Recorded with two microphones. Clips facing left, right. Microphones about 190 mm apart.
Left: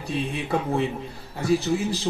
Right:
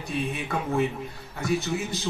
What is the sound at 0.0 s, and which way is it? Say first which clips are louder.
A man's voice: left 2 dB; 30° left (ahead or behind).